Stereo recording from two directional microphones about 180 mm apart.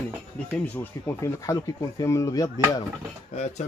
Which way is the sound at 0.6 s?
15° left (ahead or behind).